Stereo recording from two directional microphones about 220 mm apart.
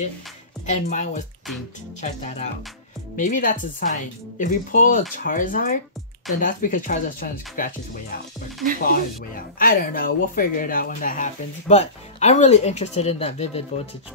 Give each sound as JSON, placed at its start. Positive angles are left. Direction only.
{"t": 0.7, "sound": "speech", "side_deg": 35}